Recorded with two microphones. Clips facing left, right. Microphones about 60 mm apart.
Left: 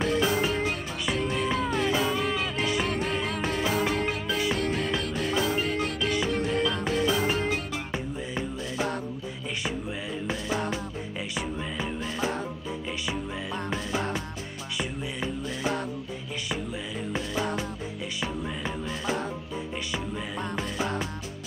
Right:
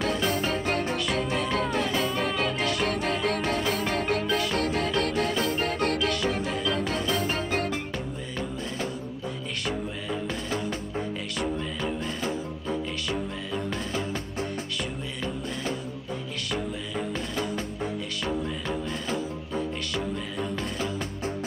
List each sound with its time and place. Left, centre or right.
0.0 s music: right
2.3 s music: centre
2.8 s music: right